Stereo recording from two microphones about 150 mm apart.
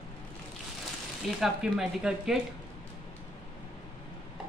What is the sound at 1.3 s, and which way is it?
Speech, centre (ahead or behind).